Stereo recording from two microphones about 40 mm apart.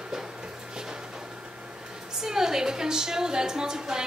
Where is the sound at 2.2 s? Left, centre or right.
Centre.